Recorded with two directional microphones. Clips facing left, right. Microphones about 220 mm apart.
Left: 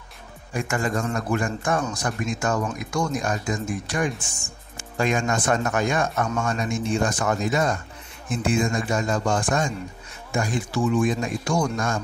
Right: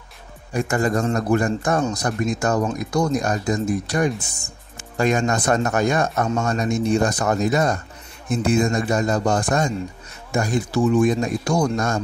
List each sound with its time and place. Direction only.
0.7 s speech: 40° right (ahead or behind)